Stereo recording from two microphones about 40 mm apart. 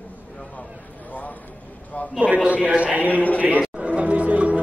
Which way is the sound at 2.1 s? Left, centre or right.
Right.